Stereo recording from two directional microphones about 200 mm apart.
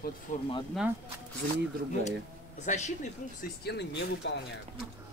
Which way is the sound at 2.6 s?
35° left (ahead or behind).